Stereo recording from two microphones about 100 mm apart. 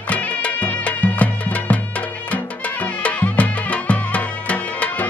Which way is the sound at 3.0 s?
15° left (ahead or behind).